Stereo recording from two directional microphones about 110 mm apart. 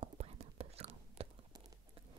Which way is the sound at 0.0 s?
65° right (ahead or behind).